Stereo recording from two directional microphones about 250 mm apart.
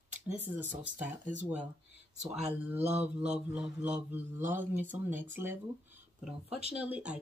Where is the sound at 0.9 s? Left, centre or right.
Right.